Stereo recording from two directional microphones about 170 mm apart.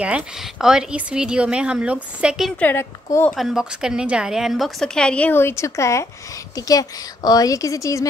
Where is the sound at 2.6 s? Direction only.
15° left (ahead or behind).